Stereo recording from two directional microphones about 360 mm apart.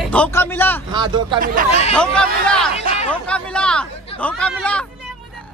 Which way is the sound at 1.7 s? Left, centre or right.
Centre.